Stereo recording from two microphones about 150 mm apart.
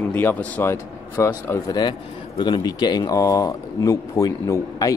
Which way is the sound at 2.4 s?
30° left (ahead or behind).